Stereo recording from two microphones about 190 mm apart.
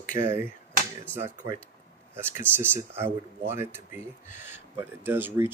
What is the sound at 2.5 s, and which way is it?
Speech, 10° right (ahead or behind).